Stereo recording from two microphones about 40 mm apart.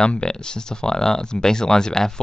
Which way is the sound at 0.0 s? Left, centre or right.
Left.